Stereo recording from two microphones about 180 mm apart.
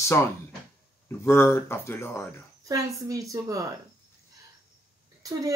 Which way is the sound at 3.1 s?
20° right (ahead or behind).